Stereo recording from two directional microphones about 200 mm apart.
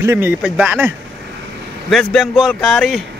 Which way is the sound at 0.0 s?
10° right (ahead or behind).